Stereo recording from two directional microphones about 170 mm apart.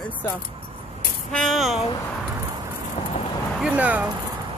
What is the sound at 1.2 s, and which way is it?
Speech, centre (ahead or behind).